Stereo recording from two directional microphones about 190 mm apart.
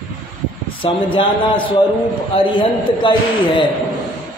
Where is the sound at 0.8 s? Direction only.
30° left (ahead or behind).